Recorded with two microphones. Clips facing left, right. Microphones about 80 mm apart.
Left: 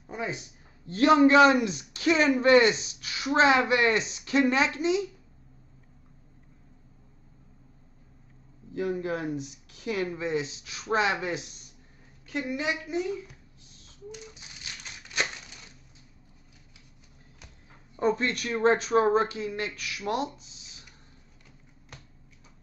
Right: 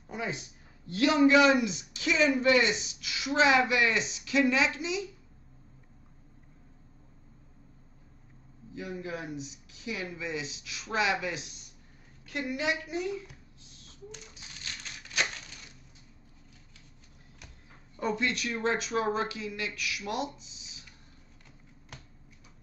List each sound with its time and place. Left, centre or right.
0.1 s a sound: left
0.8 s a man's voice: left
8.7 s a man's voice: left
12.3 s a woman's voice: left
18.0 s a man's voice: left